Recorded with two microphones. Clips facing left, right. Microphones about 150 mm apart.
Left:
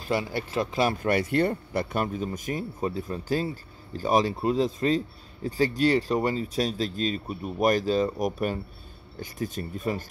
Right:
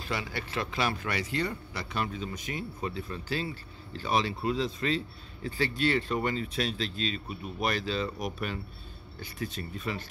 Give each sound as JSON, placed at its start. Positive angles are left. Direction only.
{"t": 0.0, "sound": "speech", "side_deg": 45}